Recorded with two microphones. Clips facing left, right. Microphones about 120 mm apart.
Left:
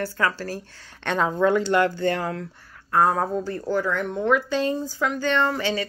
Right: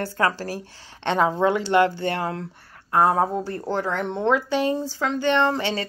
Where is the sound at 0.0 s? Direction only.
25° right (ahead or behind).